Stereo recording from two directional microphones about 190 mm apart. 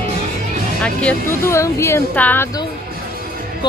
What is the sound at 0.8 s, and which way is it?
Speech, 5° left (ahead or behind).